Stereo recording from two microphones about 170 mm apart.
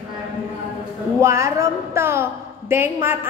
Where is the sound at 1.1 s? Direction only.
15° right (ahead or behind).